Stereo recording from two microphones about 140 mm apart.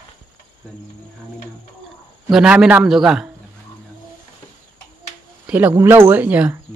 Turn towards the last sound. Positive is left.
turn(degrees=-10)  # may be behind; listen again after turning